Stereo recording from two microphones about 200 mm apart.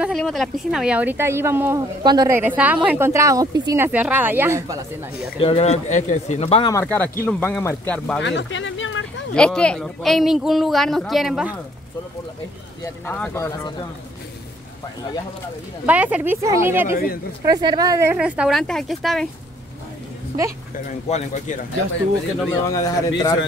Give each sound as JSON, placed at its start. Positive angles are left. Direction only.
{"t": 0.0, "sound": "speech", "side_deg": 0}
{"t": 5.4, "sound": "speech", "side_deg": 30}
{"t": 6.7, "sound": "speech", "side_deg": 10}
{"t": 8.2, "sound": "a sound", "side_deg": 65}
{"t": 9.3, "sound": "speech", "side_deg": 5}
{"t": 12.8, "sound": "speech", "side_deg": 10}
{"t": 15.8, "sound": "speech", "side_deg": -10}
{"t": 18.1, "sound": "speech", "side_deg": -5}
{"t": 21.1, "sound": "speech", "side_deg": 35}
{"t": 22.7, "sound": "speech", "side_deg": 15}